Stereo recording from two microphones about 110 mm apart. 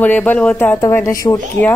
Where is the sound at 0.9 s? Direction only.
30° left (ahead or behind).